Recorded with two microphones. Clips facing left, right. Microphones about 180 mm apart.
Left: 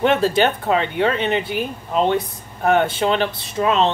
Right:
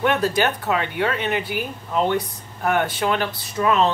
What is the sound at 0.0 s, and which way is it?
Speech, 25° left (ahead or behind).